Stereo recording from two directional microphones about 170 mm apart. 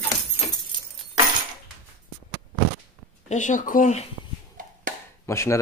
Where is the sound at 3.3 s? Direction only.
45° left (ahead or behind).